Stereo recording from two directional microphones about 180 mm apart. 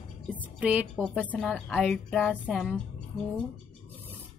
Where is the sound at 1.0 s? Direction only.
5° left (ahead or behind).